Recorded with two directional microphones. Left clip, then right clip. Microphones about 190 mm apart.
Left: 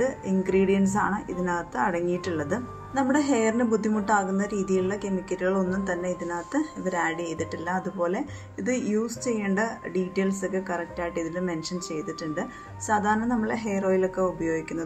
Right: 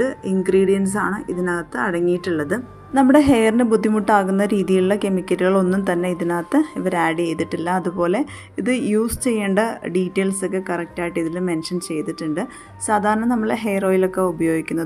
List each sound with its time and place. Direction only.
0.0 s a woman's voice: 30° right (ahead or behind)
2.9 s a woman's voice: 45° right (ahead or behind)